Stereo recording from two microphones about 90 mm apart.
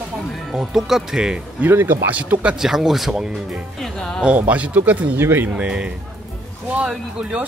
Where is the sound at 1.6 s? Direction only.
25° right (ahead or behind).